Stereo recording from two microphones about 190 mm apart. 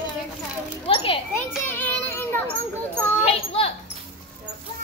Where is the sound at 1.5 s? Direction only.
10° left (ahead or behind).